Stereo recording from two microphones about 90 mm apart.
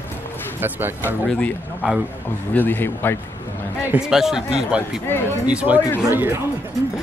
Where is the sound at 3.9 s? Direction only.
5° right (ahead or behind).